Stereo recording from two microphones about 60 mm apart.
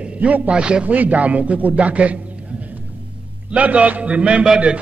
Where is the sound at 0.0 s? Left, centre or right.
Centre.